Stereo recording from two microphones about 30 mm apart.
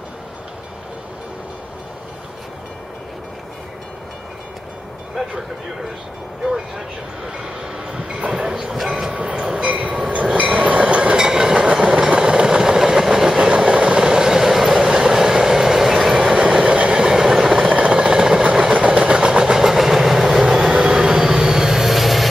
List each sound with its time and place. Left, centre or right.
8.5 s speech: centre
9.2 s train: right
9.6 s train: right
9.8 s train: right
10.3 s train: right
10.6 s train: right
11.1 s train: right
12.2 s vehicle: right
13.6 s train: right
16.3 s train: right
17.6 s a sound: right
18.0 s train: right; by 22.3 s centre